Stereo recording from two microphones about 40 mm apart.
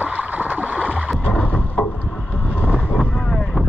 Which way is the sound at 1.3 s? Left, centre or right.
Left.